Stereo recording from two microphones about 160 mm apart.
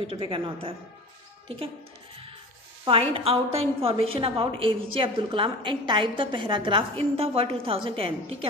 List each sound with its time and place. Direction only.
0.0 s a woman's voice: 35° right (ahead or behind)
2.8 s a woman's voice: 35° right (ahead or behind)